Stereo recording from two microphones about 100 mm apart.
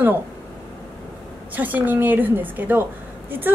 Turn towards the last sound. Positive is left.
turn(degrees=-20)  # may be behind; listen again after turning